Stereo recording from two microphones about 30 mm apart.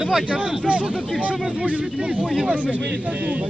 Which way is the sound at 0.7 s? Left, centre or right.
Right.